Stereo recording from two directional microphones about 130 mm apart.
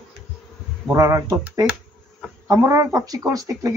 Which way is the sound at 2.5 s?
25° right (ahead or behind).